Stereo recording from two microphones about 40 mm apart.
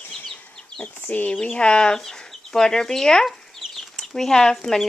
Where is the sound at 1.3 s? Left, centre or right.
Left.